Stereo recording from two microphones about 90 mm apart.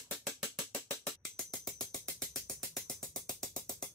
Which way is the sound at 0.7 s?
35° right (ahead or behind).